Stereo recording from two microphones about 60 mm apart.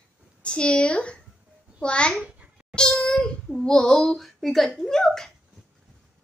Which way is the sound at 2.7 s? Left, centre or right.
Centre.